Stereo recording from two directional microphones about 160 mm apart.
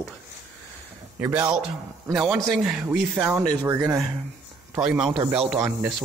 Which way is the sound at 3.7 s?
15° right (ahead or behind).